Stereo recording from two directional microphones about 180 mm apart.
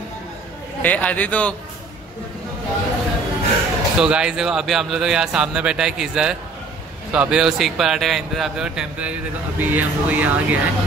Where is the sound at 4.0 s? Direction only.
5° right (ahead or behind).